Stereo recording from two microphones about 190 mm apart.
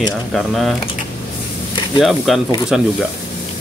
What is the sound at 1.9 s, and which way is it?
Speech, centre (ahead or behind).